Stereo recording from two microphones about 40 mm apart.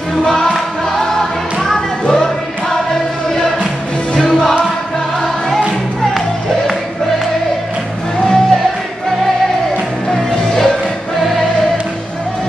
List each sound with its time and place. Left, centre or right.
0.2 s music: centre
2.0 s music: centre
4.1 s music: centre
8.2 s music: centre
10.0 s music: centre